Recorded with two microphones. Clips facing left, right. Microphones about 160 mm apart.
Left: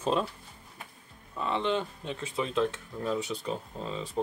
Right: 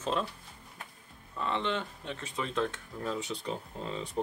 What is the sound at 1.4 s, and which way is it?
Speech, 10° left (ahead or behind).